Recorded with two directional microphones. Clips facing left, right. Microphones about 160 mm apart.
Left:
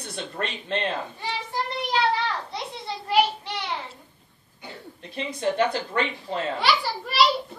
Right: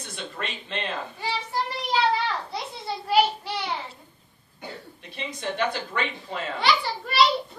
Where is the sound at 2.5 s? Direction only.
5° right (ahead or behind).